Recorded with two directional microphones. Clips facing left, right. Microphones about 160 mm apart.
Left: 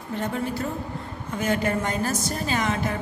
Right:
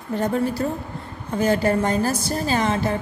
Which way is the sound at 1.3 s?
35° right (ahead or behind).